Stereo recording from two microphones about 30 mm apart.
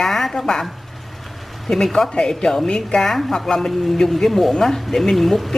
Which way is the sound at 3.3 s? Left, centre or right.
Centre.